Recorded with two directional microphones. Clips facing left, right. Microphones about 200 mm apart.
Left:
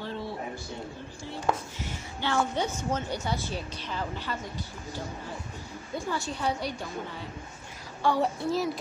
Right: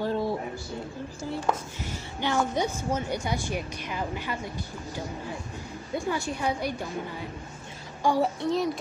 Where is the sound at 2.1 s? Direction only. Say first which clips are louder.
Right 2 dB; 15° right (ahead or behind).